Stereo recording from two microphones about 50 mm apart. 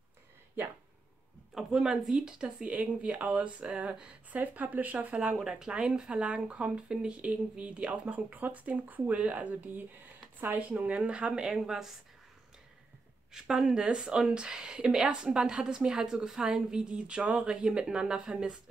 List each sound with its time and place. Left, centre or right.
1.5 s speech: centre
2.4 s speech: right; by 11.9 s centre
13.3 s a woman's voice: centre